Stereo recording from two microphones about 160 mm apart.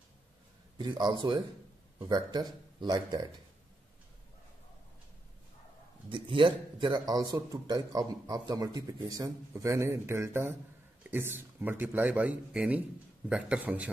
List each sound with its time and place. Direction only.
0.7 s speech: 30° right (ahead or behind)
6.0 s speech: 30° right (ahead or behind); by 13.8 s 10° right (ahead or behind)